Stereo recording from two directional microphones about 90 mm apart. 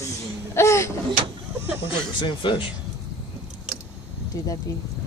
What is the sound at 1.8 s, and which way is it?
Speech, 65° left (ahead or behind).